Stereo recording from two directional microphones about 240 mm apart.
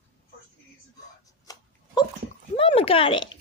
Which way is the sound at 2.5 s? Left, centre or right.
Left.